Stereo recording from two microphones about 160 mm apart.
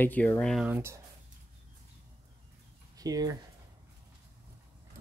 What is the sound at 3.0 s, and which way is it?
Speech, 25° right (ahead or behind).